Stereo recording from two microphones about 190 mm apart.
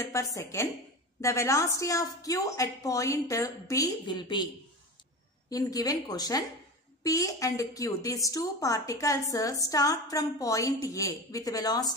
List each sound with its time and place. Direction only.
0.0 s speech: 15° left (ahead or behind)
5.5 s speech: 20° left (ahead or behind)